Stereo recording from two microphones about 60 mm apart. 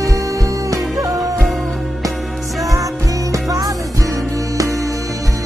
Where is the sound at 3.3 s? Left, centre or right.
Right.